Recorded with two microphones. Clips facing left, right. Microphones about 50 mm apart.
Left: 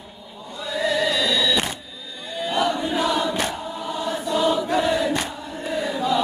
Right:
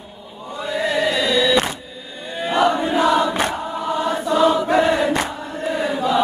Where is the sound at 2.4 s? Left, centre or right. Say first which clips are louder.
Right 5 dB; right.